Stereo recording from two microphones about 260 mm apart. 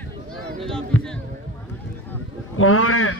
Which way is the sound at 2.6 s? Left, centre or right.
Left.